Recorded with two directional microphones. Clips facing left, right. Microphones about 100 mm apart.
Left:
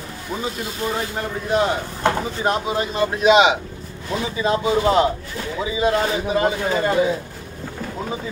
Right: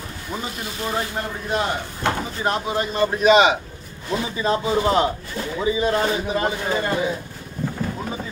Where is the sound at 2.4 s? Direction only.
15° left (ahead or behind).